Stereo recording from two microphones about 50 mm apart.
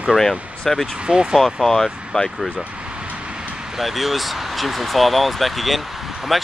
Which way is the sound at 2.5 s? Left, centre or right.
Right.